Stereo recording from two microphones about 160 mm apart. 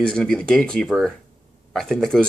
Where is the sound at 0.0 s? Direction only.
5° left (ahead or behind).